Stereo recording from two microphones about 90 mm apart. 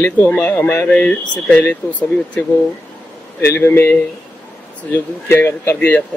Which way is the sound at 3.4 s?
30° left (ahead or behind).